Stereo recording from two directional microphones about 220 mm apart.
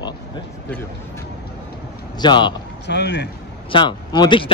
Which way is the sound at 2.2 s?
20° left (ahead or behind).